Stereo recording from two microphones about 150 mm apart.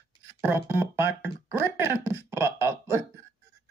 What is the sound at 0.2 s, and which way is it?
Speech, 15° right (ahead or behind).